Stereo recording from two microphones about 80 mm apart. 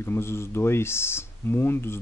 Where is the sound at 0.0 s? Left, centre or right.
Left.